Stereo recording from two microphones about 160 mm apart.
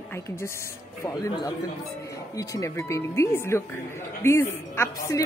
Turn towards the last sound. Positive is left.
turn(degrees=15)  # may be behind; listen again after turning